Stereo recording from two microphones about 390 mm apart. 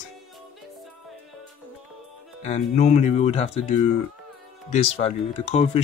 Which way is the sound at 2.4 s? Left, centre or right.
Centre.